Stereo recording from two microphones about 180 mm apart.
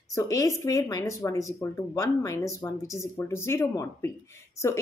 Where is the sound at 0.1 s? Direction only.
20° left (ahead or behind).